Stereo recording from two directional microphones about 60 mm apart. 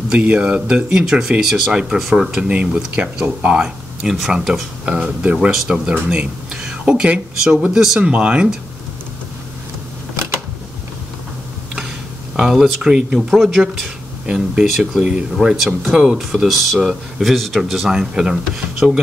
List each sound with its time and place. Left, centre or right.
0.2 s speech: centre
2.5 s speech: right; by 4.6 s centre
4.8 s speech: right
8.1 s speech: centre
12.4 s speech: centre